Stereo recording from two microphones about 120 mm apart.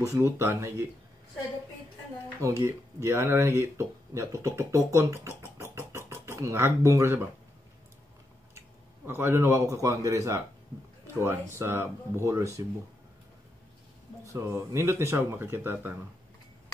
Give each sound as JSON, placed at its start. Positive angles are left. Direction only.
{"t": 0.0, "sound": "speech", "side_deg": -25}
{"t": 2.4, "sound": "speech", "side_deg": -25}
{"t": 9.0, "sound": "speech", "side_deg": -20}
{"t": 14.2, "sound": "speech", "side_deg": -25}